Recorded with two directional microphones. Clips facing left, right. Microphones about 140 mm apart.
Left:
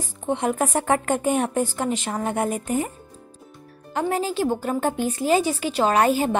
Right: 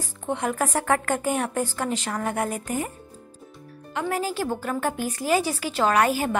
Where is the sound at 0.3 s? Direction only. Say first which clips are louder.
Left 3 dB; 20° left (ahead or behind).